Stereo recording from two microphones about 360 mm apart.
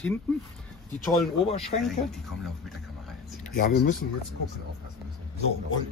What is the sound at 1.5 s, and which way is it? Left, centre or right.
Speech, centre.